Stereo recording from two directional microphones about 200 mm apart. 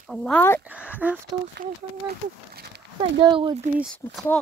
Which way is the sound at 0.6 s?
5° right (ahead or behind).